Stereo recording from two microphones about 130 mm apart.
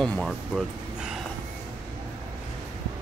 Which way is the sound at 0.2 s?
5° right (ahead or behind).